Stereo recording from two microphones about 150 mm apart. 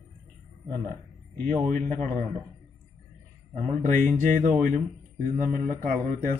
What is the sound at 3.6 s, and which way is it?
Speech, 55° right (ahead or behind).